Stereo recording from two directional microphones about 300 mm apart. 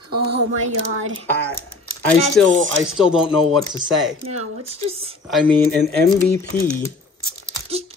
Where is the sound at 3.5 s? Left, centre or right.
Centre.